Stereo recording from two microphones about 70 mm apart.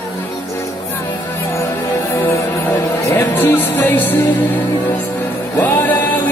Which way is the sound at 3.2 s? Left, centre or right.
Left.